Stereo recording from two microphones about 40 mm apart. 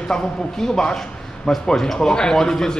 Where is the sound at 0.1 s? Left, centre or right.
Centre.